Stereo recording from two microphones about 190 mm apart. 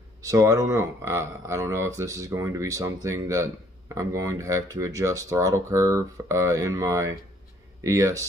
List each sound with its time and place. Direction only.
0.3 s speech: 15° right (ahead or behind)